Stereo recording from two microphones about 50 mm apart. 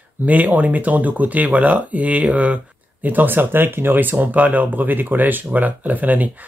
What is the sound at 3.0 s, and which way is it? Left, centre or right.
Speech, right.